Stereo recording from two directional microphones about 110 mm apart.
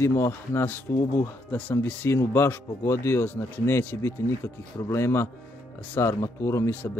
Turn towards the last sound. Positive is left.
turn(degrees=20)  # may be behind; listen again after turning